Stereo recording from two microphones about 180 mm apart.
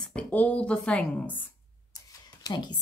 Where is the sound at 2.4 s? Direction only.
25° left (ahead or behind).